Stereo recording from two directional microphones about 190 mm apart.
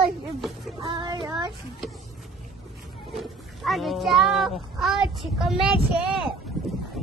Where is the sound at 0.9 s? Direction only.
25° right (ahead or behind).